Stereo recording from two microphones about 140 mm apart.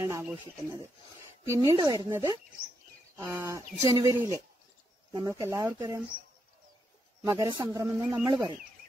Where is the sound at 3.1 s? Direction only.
20° right (ahead or behind).